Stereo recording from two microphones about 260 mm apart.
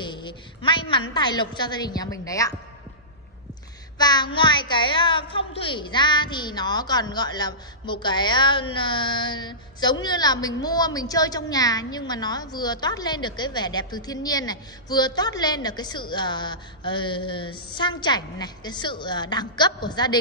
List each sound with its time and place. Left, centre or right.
0.0 s a sound: centre
1.1 s a woman's voice: centre
4.0 s a woman's voice: centre